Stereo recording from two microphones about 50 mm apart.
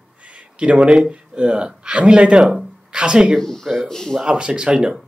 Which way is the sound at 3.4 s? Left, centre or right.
Centre.